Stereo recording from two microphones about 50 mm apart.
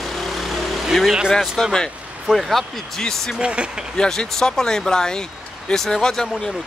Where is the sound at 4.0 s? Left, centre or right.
Centre.